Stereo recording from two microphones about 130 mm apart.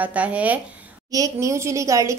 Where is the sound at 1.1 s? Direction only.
25° right (ahead or behind).